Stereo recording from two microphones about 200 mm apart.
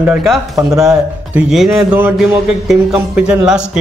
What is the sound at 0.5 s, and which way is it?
Speech, 15° right (ahead or behind).